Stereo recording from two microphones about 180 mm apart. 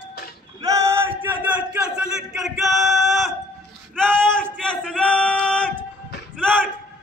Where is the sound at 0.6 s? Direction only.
15° right (ahead or behind); by 3.3 s centre (ahead or behind).